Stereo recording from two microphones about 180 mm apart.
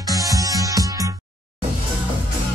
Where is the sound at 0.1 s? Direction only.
20° right (ahead or behind).